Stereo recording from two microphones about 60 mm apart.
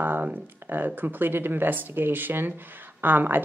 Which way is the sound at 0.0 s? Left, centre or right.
Right.